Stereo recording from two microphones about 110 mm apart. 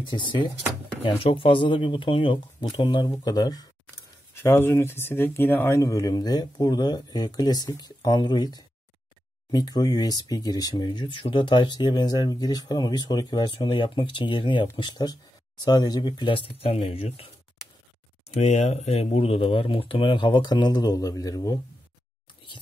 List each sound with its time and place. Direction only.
0.0 s speech: 45° left (ahead or behind)
4.3 s speech: 25° left (ahead or behind); by 17.3 s 60° left (ahead or behind)
18.4 s speech: 90° left; by 21.5 s 35° left (ahead or behind)